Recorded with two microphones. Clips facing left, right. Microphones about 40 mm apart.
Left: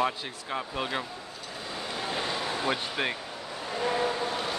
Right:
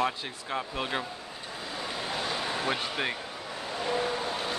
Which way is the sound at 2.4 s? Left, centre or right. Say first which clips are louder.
Even; centre.